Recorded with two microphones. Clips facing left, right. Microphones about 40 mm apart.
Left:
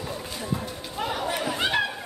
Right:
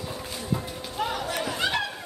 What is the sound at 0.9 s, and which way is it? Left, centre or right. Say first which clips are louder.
Chatter: left 1 dB; centre.